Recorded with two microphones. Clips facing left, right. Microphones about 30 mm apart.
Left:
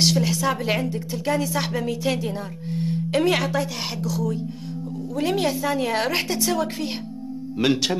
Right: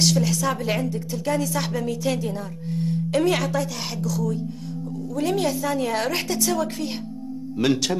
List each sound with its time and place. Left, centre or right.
0.0 s speech: left